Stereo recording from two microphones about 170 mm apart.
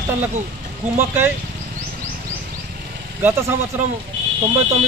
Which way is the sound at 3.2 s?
15° right (ahead or behind).